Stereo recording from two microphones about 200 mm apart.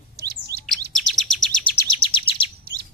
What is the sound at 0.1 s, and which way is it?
Bird, 50° right (ahead or behind).